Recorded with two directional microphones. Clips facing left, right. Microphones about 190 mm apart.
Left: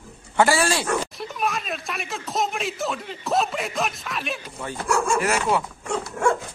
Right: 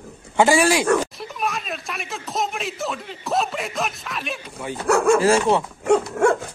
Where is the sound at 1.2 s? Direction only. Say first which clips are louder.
Even; centre (ahead or behind).